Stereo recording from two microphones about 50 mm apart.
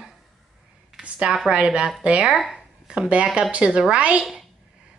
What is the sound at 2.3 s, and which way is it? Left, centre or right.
Speech, centre.